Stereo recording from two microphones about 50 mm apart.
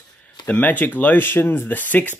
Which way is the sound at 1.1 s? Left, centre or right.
Left.